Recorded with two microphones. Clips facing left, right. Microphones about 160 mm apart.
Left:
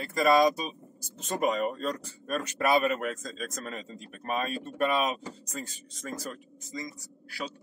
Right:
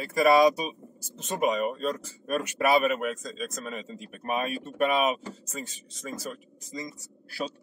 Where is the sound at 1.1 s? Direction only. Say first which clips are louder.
Right 1 dB; centre (ahead or behind).